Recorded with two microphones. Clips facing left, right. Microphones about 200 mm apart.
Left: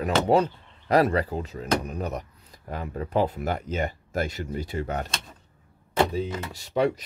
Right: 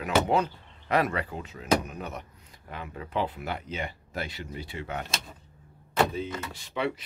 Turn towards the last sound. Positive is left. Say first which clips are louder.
# left 7 dB
turn(degrees=40)  # may be behind; listen again after turning